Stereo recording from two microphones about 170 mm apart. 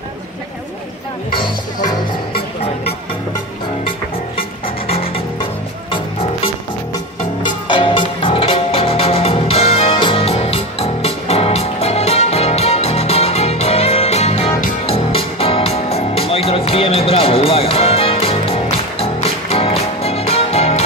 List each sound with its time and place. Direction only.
1.3 s music: 25° left (ahead or behind)
4.8 s music: 35° left (ahead or behind)
7.6 s music: 30° left (ahead or behind)